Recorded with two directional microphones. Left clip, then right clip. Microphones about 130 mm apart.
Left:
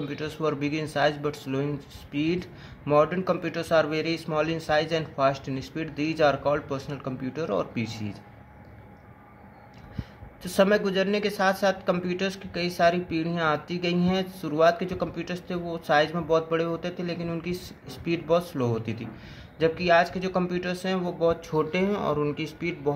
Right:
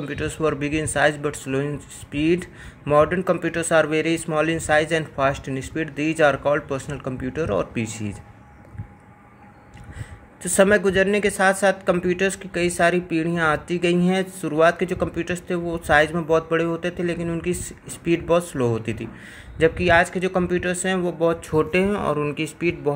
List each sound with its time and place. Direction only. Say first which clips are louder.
0.1 s speech: right 7 dB; 35° right (ahead or behind)
10.4 s speech: right 5 dB; 40° right (ahead or behind)